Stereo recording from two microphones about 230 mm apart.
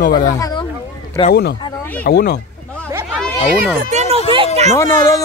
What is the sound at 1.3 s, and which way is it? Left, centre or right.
Speech, left.